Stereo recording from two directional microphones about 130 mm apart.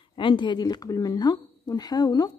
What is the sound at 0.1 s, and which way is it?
A woman's voice, 40° left (ahead or behind).